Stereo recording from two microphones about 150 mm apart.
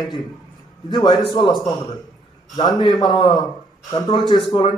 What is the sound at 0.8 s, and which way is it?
Speech, 30° left (ahead or behind).